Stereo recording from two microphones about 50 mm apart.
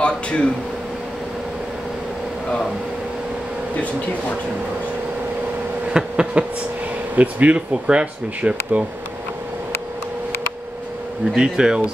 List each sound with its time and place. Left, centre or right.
0.0 s speech: left
5.9 s speech: centre
7.2 s speech: right
11.3 s speech: centre